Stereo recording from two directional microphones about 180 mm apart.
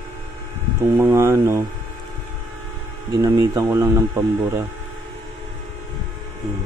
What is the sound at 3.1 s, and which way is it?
Speech, 20° right (ahead or behind).